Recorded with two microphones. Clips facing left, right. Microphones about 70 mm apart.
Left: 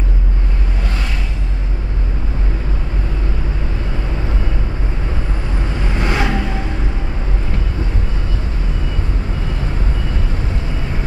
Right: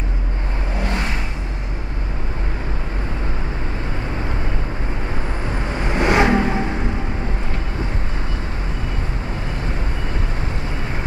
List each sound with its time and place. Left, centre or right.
5.9 s vehicle: right